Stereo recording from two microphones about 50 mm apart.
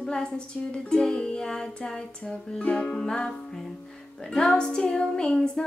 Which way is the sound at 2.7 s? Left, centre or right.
Centre.